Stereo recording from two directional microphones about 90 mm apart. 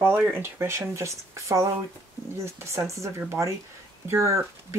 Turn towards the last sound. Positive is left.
turn(degrees=-30)  # may be behind; listen again after turning